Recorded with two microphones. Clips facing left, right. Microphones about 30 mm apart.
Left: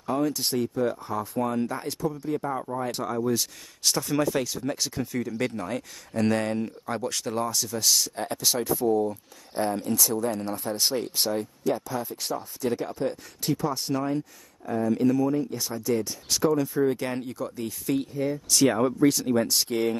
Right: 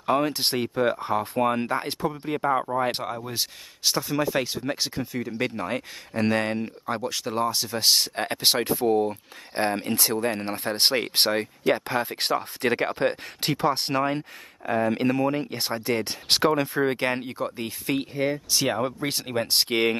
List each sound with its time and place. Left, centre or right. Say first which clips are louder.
0.0 s speech: right 3 dB; right
18.5 s speech: left 3 dB; right
19.0 s speech: left 5 dB; right